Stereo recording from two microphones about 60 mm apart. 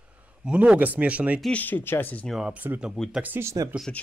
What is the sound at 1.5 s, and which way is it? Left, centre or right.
Speech, left.